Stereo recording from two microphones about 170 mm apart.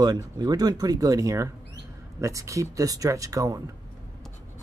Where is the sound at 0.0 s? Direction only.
20° right (ahead or behind).